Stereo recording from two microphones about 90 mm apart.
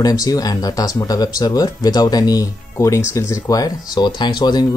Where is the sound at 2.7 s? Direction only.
35° left (ahead or behind); by 4.7 s 50° left (ahead or behind).